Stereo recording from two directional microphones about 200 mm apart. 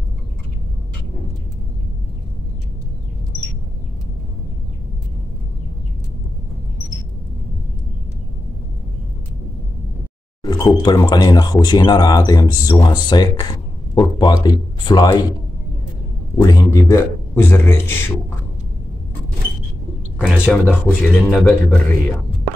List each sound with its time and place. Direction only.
10.4 s a man's voice: 20° left (ahead or behind)
16.3 s a man's voice: 15° left (ahead or behind)
20.2 s speech: centre (ahead or behind)
20.4 s a man's voice: 10° left (ahead or behind)